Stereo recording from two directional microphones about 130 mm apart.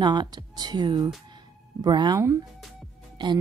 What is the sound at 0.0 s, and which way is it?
Speech, 35° right (ahead or behind).